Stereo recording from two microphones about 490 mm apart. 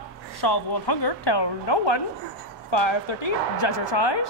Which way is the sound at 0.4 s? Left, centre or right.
Left.